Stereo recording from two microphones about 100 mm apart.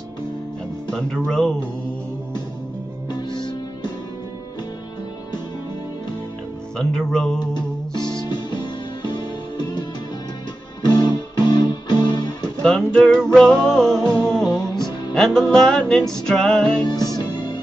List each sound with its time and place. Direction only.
0.8 s speech: 5° left (ahead or behind)
3.1 s music: 50° left (ahead or behind)
6.8 s music: 5° left (ahead or behind)
7.3 s music: 45° left (ahead or behind)
10.9 s music: 45° left (ahead or behind)
12.6 s music: 5° left (ahead or behind)
13.9 s music: 40° left (ahead or behind)
14.8 s music: 5° left (ahead or behind)
16.8 s music: 40° left (ahead or behind)